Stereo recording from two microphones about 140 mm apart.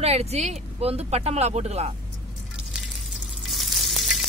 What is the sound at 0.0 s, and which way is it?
Speech, 50° right (ahead or behind).